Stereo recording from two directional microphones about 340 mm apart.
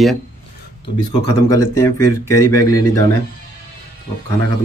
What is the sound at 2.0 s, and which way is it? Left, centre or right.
Speech, left.